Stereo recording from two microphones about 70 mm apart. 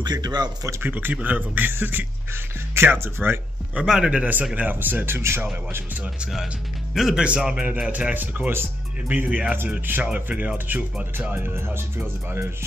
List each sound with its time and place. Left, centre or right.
0.0 s speech: right
0.8 s speech: right
3.7 s a man's voice: centre; by 5.8 s right
6.9 s speech: centre
7.2 s a man's voice: centre
7.9 s speech: right
11.3 s speech: right